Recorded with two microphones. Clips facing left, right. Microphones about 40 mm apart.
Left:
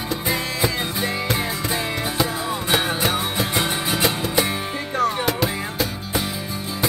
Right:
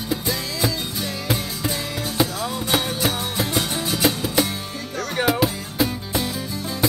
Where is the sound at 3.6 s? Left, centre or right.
Left.